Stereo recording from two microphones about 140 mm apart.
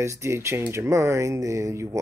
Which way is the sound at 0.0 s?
20° right (ahead or behind).